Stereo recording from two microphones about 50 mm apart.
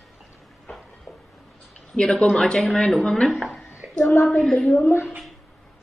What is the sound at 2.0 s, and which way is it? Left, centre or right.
Speech, centre.